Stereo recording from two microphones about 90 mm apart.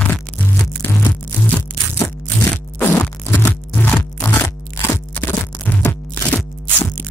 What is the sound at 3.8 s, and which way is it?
Music, 25° left (ahead or behind).